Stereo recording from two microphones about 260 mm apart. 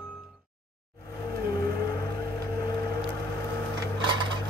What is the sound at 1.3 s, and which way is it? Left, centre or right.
Vehicle, centre.